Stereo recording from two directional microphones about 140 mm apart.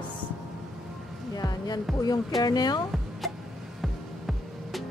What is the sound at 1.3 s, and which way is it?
A woman's voice, 30° left (ahead or behind).